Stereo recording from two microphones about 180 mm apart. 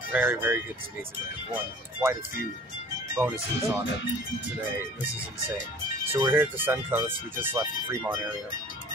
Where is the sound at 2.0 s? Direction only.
15° right (ahead or behind).